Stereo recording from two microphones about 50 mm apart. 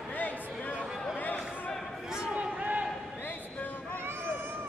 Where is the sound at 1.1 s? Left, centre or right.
Left.